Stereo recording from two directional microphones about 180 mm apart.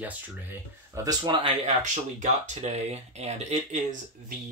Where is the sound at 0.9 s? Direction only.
20° right (ahead or behind).